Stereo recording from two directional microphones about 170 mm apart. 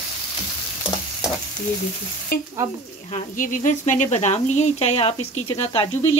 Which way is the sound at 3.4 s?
45° left (ahead or behind).